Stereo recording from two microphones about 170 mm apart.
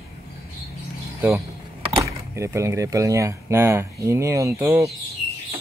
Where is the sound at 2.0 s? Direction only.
15° right (ahead or behind).